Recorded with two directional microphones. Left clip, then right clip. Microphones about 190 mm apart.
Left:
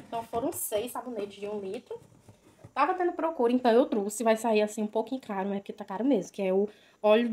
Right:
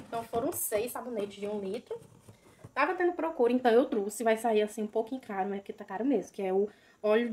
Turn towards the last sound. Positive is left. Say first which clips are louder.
# left 4 dB
turn(degrees=35)  # may be behind; listen again after turning